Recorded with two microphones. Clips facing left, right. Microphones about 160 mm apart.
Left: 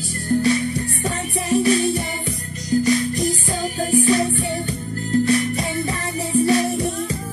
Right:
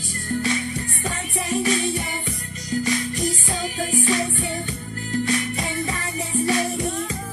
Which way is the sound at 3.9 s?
35° left (ahead or behind).